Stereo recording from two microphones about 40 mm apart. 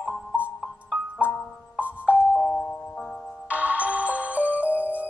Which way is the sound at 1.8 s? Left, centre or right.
Right.